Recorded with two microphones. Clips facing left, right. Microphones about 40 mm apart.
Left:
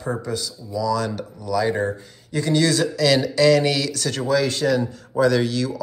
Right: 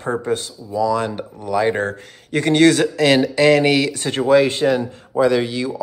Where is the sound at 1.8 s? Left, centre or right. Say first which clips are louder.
Right 1 dB; right.